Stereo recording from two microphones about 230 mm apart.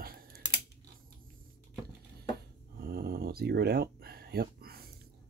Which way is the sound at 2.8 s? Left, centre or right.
Right.